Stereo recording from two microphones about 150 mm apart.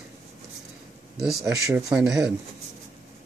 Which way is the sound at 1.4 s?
20° right (ahead or behind).